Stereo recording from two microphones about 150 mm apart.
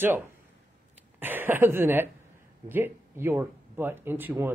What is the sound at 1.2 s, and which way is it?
Speech, 15° right (ahead or behind).